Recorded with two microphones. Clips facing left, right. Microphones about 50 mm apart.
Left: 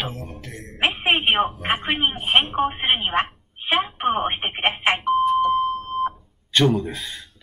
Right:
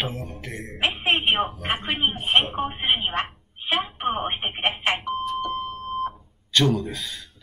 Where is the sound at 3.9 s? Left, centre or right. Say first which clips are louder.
Left 4 dB; left.